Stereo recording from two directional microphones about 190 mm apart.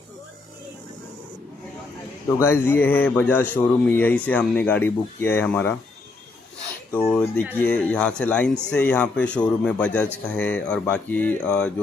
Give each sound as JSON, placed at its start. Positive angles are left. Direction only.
{"t": 2.3, "sound": "speech", "side_deg": 15}
{"t": 7.1, "sound": "speech", "side_deg": 5}